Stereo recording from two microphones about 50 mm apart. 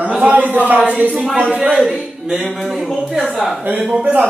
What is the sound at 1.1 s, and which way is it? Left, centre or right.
Speech, centre.